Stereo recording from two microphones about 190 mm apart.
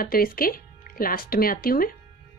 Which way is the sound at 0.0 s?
50° left (ahead or behind).